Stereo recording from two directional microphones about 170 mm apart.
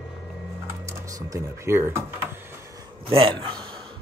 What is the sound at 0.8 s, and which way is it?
Speech, 20° right (ahead or behind).